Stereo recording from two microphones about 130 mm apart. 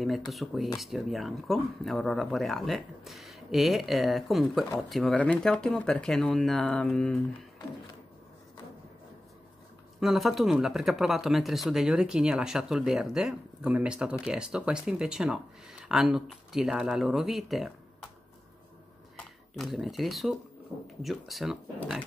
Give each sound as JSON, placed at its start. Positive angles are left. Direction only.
{"t": 0.3, "sound": "speech", "side_deg": 0}
{"t": 9.9, "sound": "speech", "side_deg": 0}
{"t": 19.1, "sound": "speech", "side_deg": 0}